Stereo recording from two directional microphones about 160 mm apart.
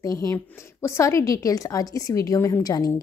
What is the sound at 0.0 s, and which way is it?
Speech, 20° left (ahead or behind).